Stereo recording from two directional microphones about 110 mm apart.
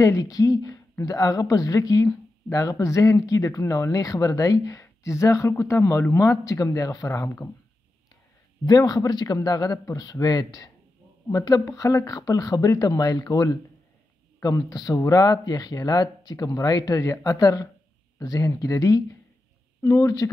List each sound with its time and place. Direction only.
0.0 s speech: 30° left (ahead or behind)
8.6 s speech: 35° left (ahead or behind)